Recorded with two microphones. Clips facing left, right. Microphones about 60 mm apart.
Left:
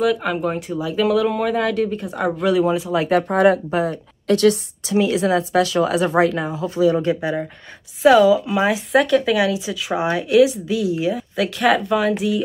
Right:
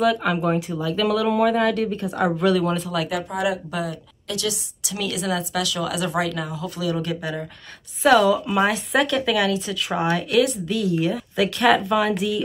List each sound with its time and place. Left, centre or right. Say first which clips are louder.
0.0 s speech: left 1 dB; centre
3.1 s speech: left 13 dB; left
3.7 s a woman's voice: left 7 dB; left
4.9 s speech: left 8 dB; left
8.0 s speech: left 4 dB; centre